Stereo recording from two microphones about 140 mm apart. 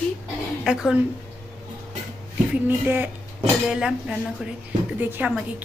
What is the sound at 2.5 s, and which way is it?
Speech, 15° right (ahead or behind).